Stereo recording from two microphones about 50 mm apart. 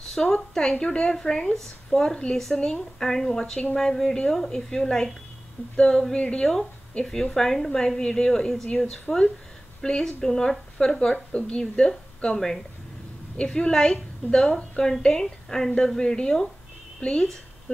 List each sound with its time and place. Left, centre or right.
0.1 s a woman's voice: centre